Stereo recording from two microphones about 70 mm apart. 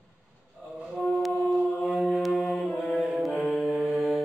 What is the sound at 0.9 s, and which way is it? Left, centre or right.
Music, centre.